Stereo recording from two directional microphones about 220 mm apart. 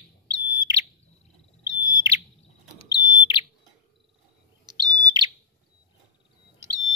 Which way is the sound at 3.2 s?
20° left (ahead or behind).